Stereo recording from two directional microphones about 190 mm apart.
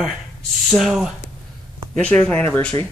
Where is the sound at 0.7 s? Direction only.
Centre (ahead or behind).